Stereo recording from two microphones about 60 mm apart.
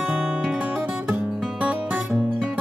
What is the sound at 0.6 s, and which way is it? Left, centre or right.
Music, right.